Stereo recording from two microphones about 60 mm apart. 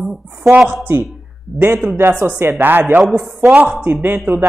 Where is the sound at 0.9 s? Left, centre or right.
Right.